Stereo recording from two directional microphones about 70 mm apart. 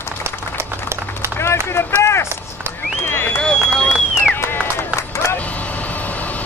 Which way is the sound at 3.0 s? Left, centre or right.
Left.